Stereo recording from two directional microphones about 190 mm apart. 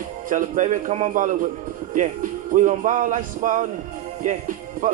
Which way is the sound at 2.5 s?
40° right (ahead or behind).